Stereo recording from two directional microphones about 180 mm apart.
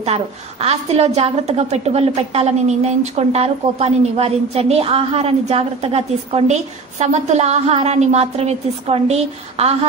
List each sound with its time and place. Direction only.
0.0 s a woman's voice: 35° right (ahead or behind)